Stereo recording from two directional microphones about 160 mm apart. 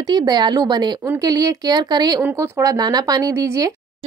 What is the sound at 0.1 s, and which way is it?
Speech, 25° right (ahead or behind).